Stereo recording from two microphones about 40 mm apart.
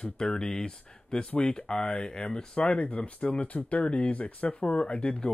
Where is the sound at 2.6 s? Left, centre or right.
Left.